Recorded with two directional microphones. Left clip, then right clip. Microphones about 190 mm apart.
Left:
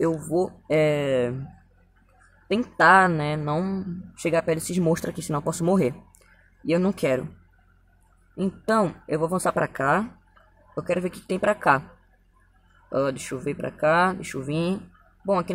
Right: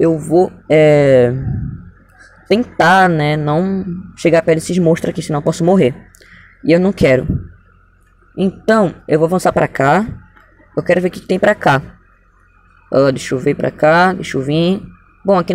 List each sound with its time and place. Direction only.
0.0 s speech: 5° right (ahead or behind)
2.8 s speech: 5° right (ahead or behind)
8.5 s speech: centre (ahead or behind)
12.9 s speech: 10° right (ahead or behind)